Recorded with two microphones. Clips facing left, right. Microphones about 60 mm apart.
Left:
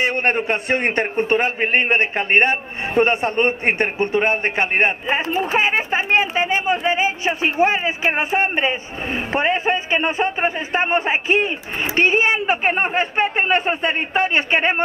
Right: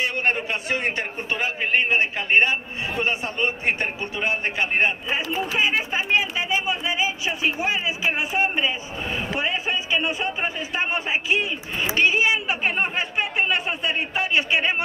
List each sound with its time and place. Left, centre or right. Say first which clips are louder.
0.0 s a man's voice: left 5 dB; left